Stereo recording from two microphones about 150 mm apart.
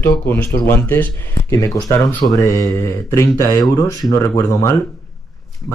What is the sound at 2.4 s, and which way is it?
Mantra, 20° left (ahead or behind).